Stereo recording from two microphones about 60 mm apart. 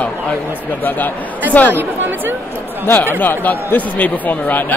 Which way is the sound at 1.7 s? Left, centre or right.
Right.